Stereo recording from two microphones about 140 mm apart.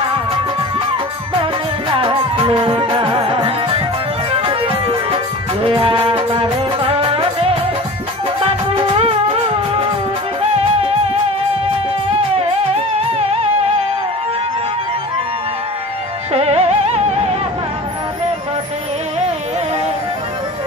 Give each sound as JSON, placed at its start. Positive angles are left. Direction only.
{"t": 1.4, "sound": "music", "side_deg": -40}
{"t": 8.9, "sound": "music", "side_deg": -45}
{"t": 16.3, "sound": "music", "side_deg": -45}